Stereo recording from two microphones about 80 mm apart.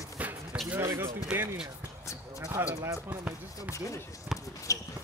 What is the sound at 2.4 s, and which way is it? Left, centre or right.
Speech, right.